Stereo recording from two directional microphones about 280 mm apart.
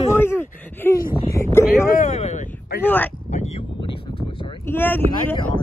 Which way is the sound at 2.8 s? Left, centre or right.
Centre.